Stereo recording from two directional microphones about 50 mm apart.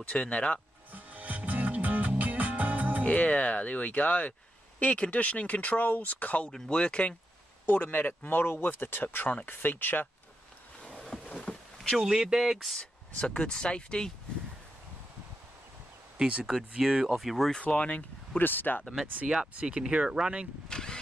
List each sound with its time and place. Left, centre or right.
0.1 s speech: left
0.9 s music: right
3.0 s speech: left
6.5 s speech: centre
7.6 s speech: left
10.8 s a sound: left
12.0 s speech: centre
12.5 s speech: centre
13.1 s speech: left
16.2 s speech: right; by 17.5 s centre
17.6 s speech: left
18.3 s speech: left
19.5 s speech: right
20.6 s vehicle: centre